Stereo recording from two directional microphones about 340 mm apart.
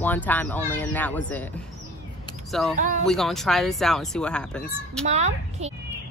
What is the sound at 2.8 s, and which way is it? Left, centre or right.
Speech, right.